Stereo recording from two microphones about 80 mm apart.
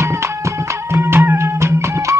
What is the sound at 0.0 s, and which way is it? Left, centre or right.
Music, right.